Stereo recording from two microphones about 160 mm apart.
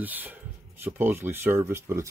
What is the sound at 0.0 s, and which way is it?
Speech, 10° right (ahead or behind).